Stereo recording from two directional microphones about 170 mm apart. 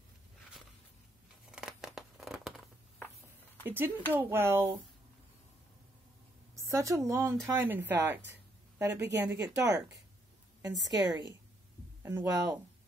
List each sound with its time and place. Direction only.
1.5 s crumpling: 5° right (ahead or behind)
3.6 s speech: 10° right (ahead or behind)
6.5 s a woman's voice: 15° right (ahead or behind)